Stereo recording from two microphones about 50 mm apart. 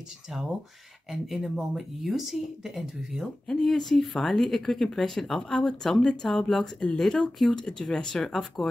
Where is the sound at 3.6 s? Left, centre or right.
Centre.